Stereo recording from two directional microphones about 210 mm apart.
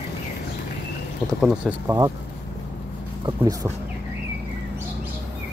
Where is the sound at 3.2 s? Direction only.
15° right (ahead or behind).